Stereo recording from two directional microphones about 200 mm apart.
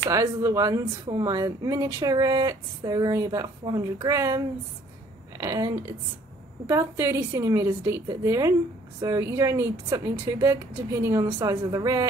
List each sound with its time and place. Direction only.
0.0 s speech: 15° right (ahead or behind)
5.4 s a woman's voice: 15° right (ahead or behind)
6.7 s speech: 15° right (ahead or behind)